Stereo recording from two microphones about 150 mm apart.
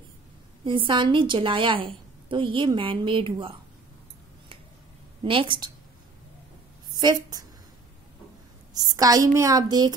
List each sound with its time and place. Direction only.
0.7 s a woman's voice: 35° right (ahead or behind)
5.2 s a woman's voice: 35° right (ahead or behind)
7.0 s a woman's voice: 25° right (ahead or behind)
8.7 s a woman's voice: 25° right (ahead or behind)